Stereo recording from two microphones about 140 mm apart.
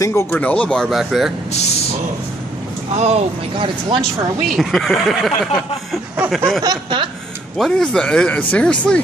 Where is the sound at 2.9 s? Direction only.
50° right (ahead or behind).